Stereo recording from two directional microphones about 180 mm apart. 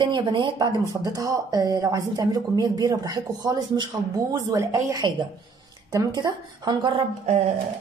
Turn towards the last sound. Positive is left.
turn(degrees=-35)  # may be behind; listen again after turning